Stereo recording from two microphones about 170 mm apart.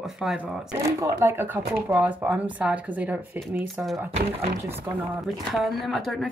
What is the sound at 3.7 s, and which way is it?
Speech, centre (ahead or behind).